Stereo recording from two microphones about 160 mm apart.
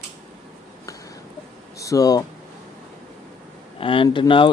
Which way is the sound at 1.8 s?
20° left (ahead or behind).